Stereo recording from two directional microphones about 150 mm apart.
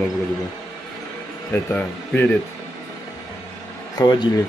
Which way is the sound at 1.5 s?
10° left (ahead or behind).